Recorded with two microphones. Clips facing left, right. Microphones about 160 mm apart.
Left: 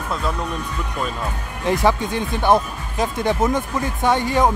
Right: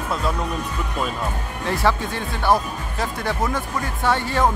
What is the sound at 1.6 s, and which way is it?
Speech, 15° left (ahead or behind).